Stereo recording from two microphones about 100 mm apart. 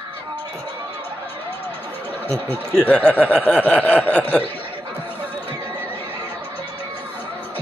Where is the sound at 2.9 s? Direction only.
10° left (ahead or behind).